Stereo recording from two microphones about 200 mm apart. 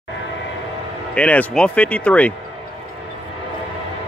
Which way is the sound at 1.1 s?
5° left (ahead or behind).